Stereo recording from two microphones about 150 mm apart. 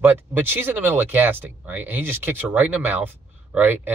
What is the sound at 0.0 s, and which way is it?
Speech, 15° right (ahead or behind).